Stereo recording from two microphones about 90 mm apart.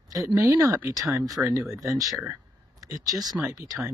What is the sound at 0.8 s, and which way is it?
Speech, 40° right (ahead or behind).